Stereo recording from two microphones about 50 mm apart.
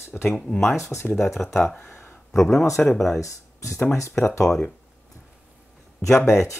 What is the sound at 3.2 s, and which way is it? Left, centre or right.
Speech, left.